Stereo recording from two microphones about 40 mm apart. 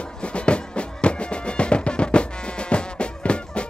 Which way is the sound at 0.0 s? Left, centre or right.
Left.